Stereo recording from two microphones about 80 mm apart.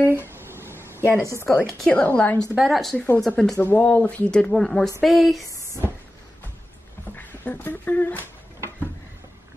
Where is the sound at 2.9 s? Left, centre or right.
Left; by 5.4 s centre.